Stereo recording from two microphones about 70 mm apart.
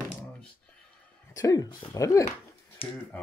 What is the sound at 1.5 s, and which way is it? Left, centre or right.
Speech, left.